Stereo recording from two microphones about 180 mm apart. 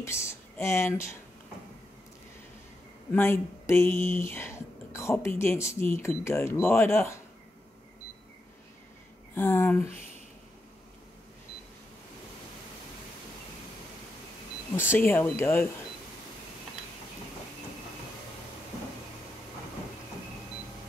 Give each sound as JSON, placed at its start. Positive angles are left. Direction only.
{"t": 0.0, "sound": "speech", "side_deg": 15}
{"t": 3.1, "sound": "speech", "side_deg": 15}
{"t": 9.3, "sound": "speech", "side_deg": 10}
{"t": 14.9, "sound": "speech", "side_deg": 10}